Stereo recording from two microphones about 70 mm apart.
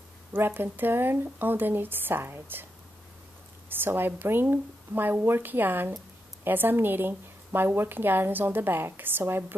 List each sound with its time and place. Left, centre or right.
0.3 s a woman's voice: right
3.6 s a woman's voice: right